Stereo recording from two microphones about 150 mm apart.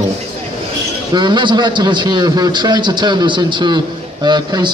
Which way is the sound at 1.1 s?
30° right (ahead or behind).